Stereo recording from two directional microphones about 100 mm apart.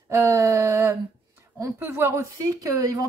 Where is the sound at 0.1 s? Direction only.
35° right (ahead or behind).